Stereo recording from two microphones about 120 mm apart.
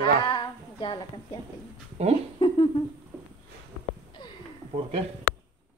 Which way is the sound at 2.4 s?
40° left (ahead or behind).